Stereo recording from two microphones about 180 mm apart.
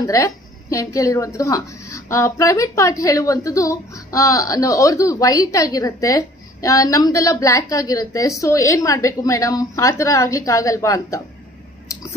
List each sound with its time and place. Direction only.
0.0 s a woman's voice: 20° left (ahead or behind)